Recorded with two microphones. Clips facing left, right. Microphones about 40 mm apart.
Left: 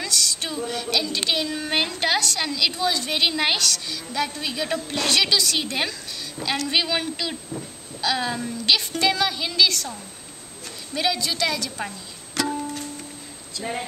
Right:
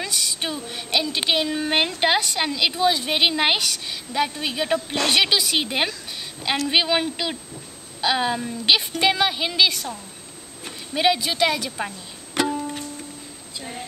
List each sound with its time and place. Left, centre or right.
0.0 s a sound: right
2.0 s a woman's voice: right
11.0 s a woman's voice: right
12.4 s music: centre